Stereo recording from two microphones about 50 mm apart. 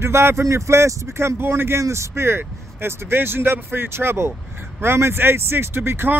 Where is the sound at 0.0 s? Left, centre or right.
Right.